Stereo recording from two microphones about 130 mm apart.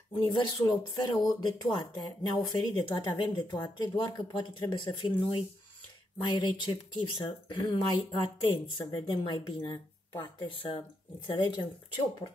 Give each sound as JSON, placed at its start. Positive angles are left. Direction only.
{"t": 0.1, "sound": "speech", "side_deg": 40}